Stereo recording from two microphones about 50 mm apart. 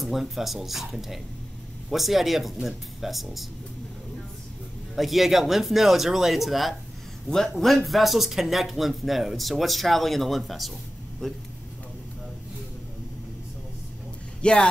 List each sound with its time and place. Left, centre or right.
0.0 s speech: centre
4.9 s speech: centre
7.2 s speech: centre
11.2 s speech: centre
14.4 s speech: centre